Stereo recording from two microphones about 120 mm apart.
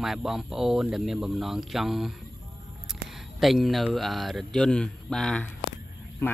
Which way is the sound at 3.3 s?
Centre (ahead or behind).